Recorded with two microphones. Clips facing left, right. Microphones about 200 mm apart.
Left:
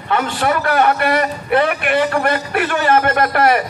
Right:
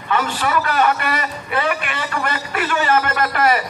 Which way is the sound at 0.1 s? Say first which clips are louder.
Left 2 dB; 55° left (ahead or behind).